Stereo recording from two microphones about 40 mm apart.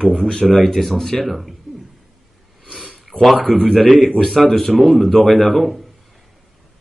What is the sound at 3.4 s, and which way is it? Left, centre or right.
Speech, left.